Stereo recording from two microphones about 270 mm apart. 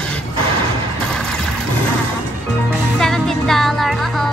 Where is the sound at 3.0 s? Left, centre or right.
Centre.